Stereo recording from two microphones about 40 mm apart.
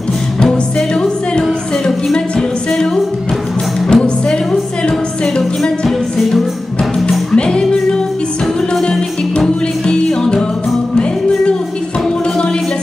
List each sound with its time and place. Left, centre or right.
0.7 s music: left
3.9 s music: left
5.4 s music: centre
7.3 s music: left
9.8 s music: centre